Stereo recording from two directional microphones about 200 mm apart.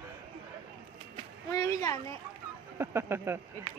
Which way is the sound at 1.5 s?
15° left (ahead or behind).